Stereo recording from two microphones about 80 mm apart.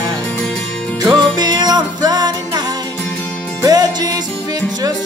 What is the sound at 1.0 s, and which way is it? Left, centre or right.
Music, right.